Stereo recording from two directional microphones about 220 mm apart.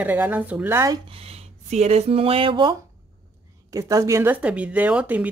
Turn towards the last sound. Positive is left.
turn(degrees=-5)  # may be behind; listen again after turning